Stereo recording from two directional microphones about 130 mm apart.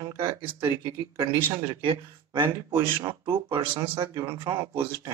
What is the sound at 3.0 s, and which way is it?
Speech, 35° right (ahead or behind).